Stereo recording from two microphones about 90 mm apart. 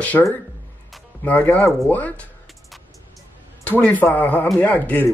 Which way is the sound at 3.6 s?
15° left (ahead or behind).